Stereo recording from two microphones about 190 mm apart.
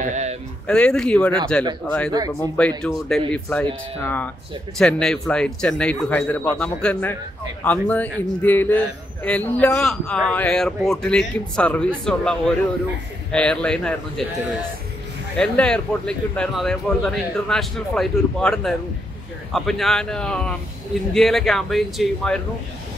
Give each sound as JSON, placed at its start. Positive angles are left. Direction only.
{"t": 0.0, "sound": "a sound", "side_deg": -40}
{"t": 0.7, "sound": "a man's voice", "side_deg": 5}
{"t": 15.3, "sound": "speech", "side_deg": 5}